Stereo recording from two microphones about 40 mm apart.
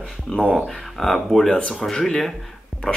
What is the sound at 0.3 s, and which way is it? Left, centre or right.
Speech, left.